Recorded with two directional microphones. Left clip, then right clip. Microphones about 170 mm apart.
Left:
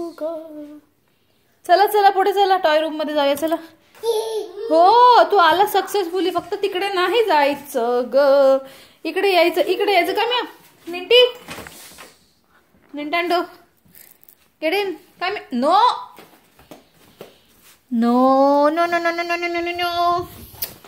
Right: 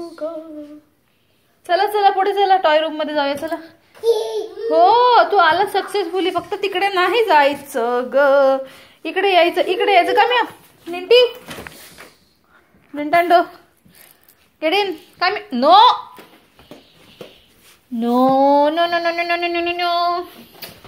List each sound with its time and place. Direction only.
1.6 s a sound: 40° left (ahead or behind)
3.3 s a woman's voice: 45° left (ahead or behind); by 10.4 s 20° left (ahead or behind)
10.9 s speech: 5° right (ahead or behind)
12.9 s speech: 10° left (ahead or behind)
14.6 s speech: 10° left (ahead or behind)
17.9 s a woman's voice: 45° left (ahead or behind)
18.2 s a sound: 35° left (ahead or behind)